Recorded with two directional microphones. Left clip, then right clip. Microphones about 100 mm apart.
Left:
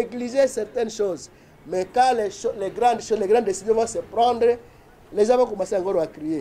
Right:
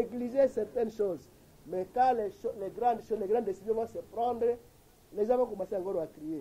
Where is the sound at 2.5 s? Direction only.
25° left (ahead or behind).